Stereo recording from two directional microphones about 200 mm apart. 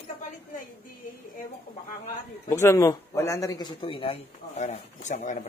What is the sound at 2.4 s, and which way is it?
A man's voice, 15° left (ahead or behind).